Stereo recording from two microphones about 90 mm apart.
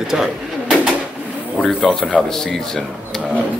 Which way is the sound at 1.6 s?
5° left (ahead or behind).